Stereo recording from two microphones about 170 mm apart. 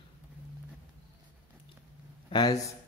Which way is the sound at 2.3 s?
25° left (ahead or behind).